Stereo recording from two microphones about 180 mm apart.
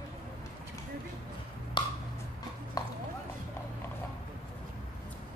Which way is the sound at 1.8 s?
25° left (ahead or behind).